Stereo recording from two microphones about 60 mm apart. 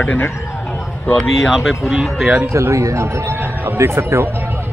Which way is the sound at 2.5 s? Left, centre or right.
Right.